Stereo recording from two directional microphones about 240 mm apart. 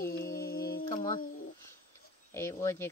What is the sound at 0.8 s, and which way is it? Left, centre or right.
Music, centre.